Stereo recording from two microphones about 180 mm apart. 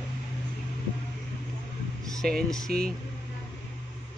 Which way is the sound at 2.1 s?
5° left (ahead or behind).